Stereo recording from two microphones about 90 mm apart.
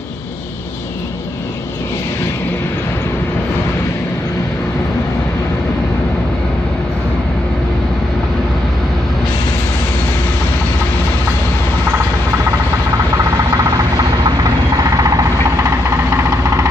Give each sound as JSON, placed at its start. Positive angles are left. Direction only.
{"t": 13.2, "sound": "vehicle", "side_deg": -40}